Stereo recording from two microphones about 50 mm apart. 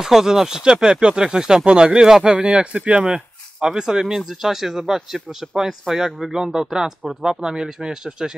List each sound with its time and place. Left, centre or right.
0.0 s speech: centre
2.3 s speech: right